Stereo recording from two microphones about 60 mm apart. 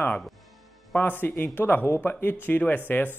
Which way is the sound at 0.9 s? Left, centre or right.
Left.